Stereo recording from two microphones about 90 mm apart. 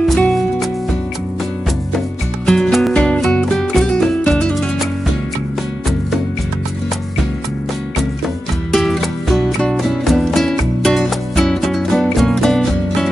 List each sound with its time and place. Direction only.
0.1 s music: centre (ahead or behind)
2.4 s music: 5° left (ahead or behind)
8.7 s music: centre (ahead or behind)